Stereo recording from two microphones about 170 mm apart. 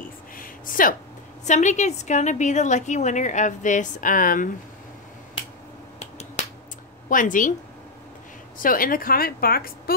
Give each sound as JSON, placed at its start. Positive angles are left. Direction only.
{"t": 0.4, "sound": "a sound", "side_deg": 55}
{"t": 1.4, "sound": "a woman's voice", "side_deg": 45}
{"t": 5.9, "sound": "finger snapping", "side_deg": 40}
{"t": 7.1, "sound": "a woman's voice", "side_deg": 50}
{"t": 8.5, "sound": "a woman's voice", "side_deg": 55}